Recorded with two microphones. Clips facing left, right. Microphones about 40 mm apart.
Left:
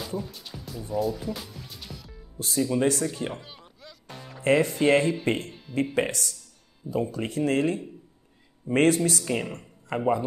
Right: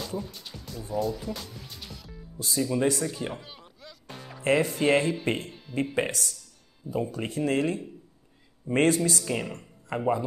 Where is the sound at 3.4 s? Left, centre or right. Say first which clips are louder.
Even; centre.